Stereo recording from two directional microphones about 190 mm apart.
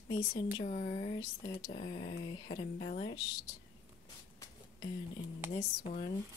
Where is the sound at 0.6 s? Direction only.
40° left (ahead or behind).